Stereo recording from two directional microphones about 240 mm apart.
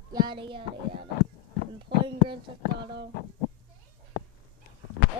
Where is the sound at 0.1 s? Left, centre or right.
Centre.